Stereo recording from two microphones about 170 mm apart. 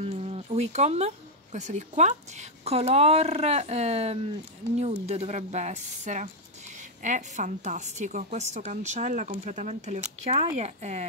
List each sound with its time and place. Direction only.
0.0 s a woman's voice: 35° right (ahead or behind)